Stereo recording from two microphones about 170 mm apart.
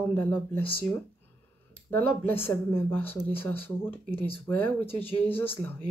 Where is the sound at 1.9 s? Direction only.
10° left (ahead or behind).